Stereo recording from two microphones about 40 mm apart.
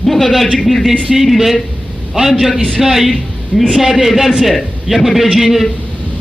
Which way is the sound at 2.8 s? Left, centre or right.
Centre.